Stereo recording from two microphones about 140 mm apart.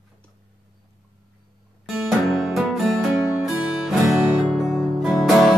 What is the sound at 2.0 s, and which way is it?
Music, centre (ahead or behind).